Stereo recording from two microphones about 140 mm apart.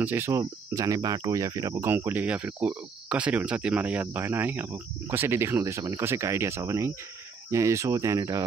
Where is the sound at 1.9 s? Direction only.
15° right (ahead or behind).